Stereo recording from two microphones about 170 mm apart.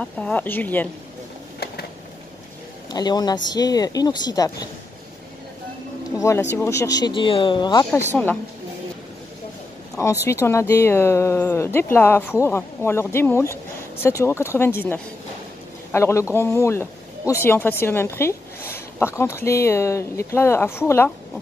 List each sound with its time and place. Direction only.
0.0 s a woman's voice: 10° left (ahead or behind)
2.9 s speech: 25° left (ahead or behind)
6.1 s speech: 15° left (ahead or behind)
8.1 s a woman's voice: 5° left (ahead or behind)
10.2 s a woman's voice: 15° left (ahead or behind)